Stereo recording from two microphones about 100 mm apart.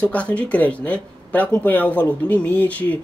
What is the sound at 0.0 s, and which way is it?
Speech, 15° left (ahead or behind).